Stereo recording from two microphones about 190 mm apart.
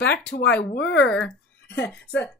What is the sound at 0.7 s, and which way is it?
Speech, 65° left (ahead or behind).